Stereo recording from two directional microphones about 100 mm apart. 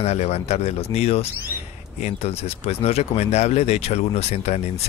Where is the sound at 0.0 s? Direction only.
90° left.